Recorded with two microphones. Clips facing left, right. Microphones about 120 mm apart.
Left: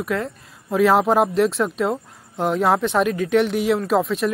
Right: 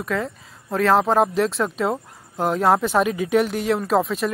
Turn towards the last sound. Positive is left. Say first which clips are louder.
# left 1 dB
turn(degrees=0)  # may be behind; listen again after turning